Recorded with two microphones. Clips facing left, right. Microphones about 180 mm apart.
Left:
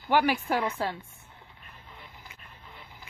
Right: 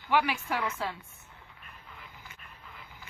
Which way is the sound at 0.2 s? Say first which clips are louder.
Left 5 dB; 35° left (ahead or behind).